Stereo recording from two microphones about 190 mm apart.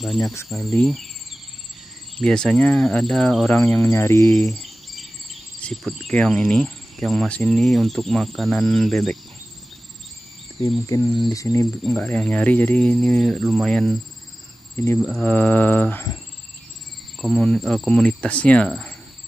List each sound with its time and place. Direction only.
0.0 s speech: centre (ahead or behind)
2.1 s speech: 5° left (ahead or behind)
4.3 s cricket: centre (ahead or behind)
10.9 s speech: 20° left (ahead or behind)
11.8 s speech: 10° left (ahead or behind)
15.0 s speech: centre (ahead or behind)
17.2 s speech: 5° left (ahead or behind)